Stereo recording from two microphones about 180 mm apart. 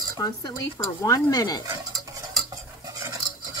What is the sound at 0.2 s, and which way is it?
Speech, 20° left (ahead or behind).